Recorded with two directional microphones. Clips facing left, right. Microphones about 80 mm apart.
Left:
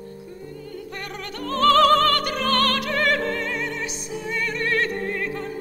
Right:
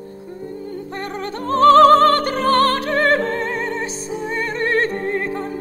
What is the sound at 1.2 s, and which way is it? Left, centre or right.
Music, right.